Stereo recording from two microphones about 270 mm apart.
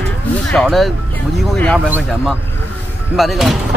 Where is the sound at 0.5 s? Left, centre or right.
Centre.